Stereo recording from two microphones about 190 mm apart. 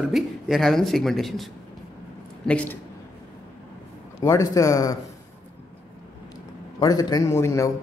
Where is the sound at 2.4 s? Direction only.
5° left (ahead or behind).